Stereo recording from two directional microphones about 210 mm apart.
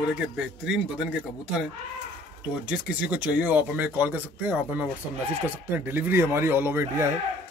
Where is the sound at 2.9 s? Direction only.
5° right (ahead or behind).